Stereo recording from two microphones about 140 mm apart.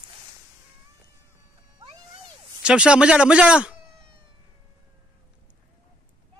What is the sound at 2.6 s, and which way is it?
Speech, 5° right (ahead or behind).